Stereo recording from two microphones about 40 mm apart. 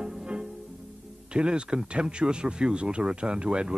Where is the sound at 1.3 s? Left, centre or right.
Right.